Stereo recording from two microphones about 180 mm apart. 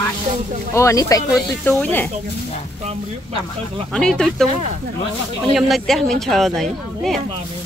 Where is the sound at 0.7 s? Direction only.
20° left (ahead or behind).